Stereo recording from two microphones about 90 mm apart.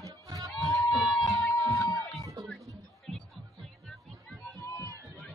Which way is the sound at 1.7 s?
40° left (ahead or behind).